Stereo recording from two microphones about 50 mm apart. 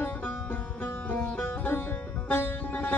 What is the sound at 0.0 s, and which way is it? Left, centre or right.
Music, left.